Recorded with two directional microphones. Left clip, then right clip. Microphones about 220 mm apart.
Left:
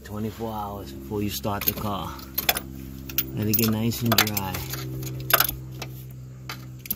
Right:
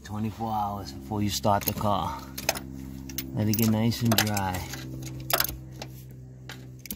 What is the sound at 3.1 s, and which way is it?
Speech, 20° right (ahead or behind).